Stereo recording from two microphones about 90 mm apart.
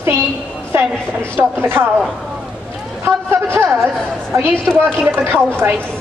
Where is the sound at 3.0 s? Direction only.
30° right (ahead or behind).